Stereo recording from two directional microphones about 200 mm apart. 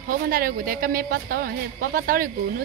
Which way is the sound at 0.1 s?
45° right (ahead or behind).